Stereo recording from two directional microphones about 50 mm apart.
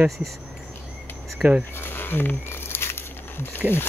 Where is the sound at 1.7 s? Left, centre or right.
Left.